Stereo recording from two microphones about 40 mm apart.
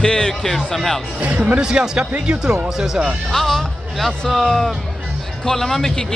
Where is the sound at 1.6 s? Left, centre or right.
Right.